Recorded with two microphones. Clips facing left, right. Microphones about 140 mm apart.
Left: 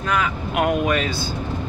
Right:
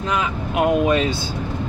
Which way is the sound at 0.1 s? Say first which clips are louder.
Left 1 dB; 25° right (ahead or behind).